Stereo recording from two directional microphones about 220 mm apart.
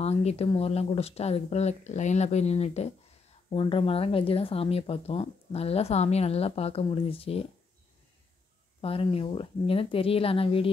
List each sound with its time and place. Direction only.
0.0 s speech: 30° left (ahead or behind)
8.8 s speech: 25° left (ahead or behind)